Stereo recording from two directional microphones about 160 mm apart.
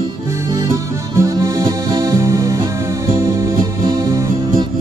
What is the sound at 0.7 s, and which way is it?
Music, 20° right (ahead or behind).